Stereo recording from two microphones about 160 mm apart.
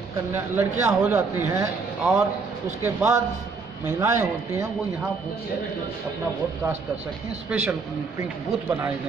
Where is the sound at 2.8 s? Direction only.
15° right (ahead or behind).